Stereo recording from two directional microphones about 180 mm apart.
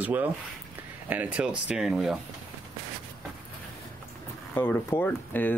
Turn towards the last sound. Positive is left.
turn(degrees=10)  # may be behind; listen again after turning